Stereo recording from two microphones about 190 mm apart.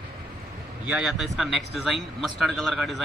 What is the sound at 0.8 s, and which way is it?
Speech, 5° right (ahead or behind).